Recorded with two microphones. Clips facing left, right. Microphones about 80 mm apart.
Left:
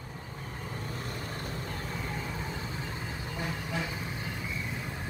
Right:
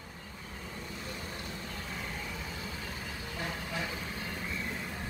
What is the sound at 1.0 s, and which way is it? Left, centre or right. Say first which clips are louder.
Vehicle: left 3 dB; left.